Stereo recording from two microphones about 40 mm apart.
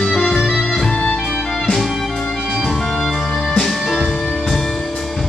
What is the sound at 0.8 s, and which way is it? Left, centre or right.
Music, left.